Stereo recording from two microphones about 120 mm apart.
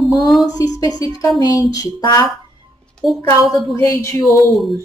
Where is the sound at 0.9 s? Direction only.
45° right (ahead or behind).